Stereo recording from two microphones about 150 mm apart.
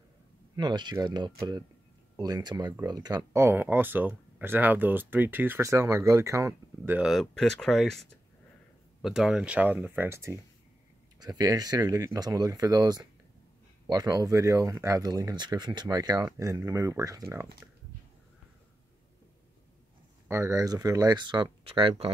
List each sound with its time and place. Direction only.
0.6 s speech: 30° right (ahead or behind)
3.4 s speech: 15° right (ahead or behind)
7.0 s speech: centre (ahead or behind); by 17.6 s 20° right (ahead or behind)
20.2 s speech: 20° right (ahead or behind); by 22.1 s 35° right (ahead or behind)